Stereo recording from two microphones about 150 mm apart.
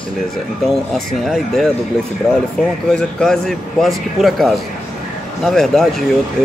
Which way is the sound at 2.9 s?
5° left (ahead or behind).